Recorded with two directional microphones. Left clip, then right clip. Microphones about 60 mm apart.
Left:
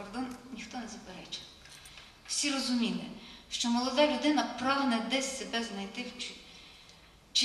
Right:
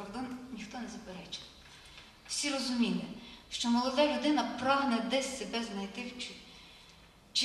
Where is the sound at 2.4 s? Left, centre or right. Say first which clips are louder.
Left 1 dB; left.